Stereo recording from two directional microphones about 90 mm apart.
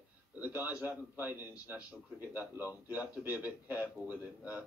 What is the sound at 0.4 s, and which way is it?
Speech, 20° right (ahead or behind).